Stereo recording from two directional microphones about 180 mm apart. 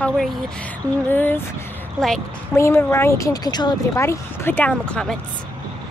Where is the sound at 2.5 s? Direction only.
15° left (ahead or behind).